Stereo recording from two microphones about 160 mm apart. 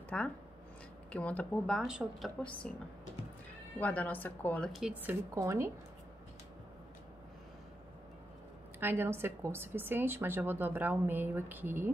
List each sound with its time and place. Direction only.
0.1 s speech: 5° left (ahead or behind)
1.8 s a woman's voice: 5° right (ahead or behind)
3.8 s speech: 10° left (ahead or behind)
4.7 s a woman's voice: 5° right (ahead or behind)
5.3 s speech: 20° right (ahead or behind)
8.7 s a woman's voice: 15° right (ahead or behind)